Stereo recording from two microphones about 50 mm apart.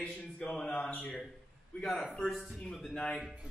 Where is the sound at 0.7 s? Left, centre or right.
Left.